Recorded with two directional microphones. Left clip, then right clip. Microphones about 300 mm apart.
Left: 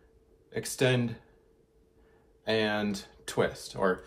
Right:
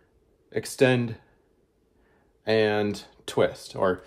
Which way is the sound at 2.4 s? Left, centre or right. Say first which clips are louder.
Right 6 dB; right.